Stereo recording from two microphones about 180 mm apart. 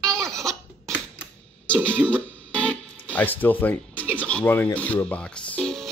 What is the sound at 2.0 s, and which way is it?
Guitar, 10° left (ahead or behind).